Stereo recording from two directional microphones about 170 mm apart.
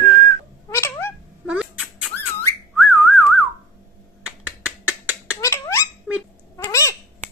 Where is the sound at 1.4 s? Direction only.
5° right (ahead or behind).